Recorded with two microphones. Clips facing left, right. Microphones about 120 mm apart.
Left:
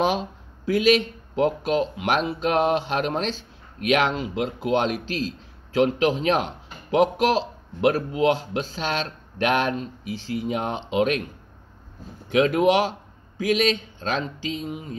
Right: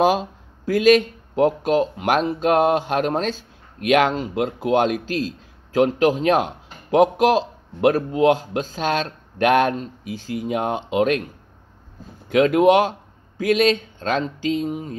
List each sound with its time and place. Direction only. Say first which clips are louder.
0.0 s speech: right 5 dB; 45° right (ahead or behind)
12.3 s speech: right 4 dB; 40° right (ahead or behind)